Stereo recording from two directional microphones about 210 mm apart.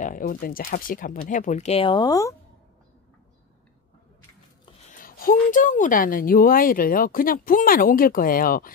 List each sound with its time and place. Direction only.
0.0 s speech: 40° left (ahead or behind); by 2.3 s 15° left (ahead or behind)
4.9 s speech: 40° left (ahead or behind)